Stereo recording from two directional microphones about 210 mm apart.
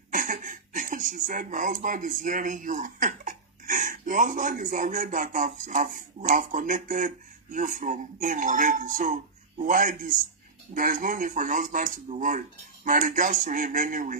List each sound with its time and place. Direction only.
0.1 s speech: 40° right (ahead or behind)